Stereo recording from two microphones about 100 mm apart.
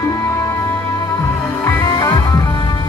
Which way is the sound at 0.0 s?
30° left (ahead or behind).